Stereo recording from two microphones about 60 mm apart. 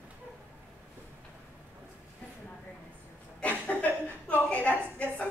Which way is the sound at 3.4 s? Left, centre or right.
Left.